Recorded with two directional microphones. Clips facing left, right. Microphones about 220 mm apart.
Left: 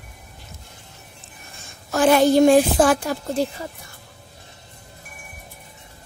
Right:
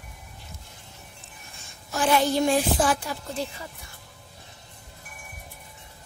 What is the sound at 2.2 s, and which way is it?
A child's voice, 45° left (ahead or behind).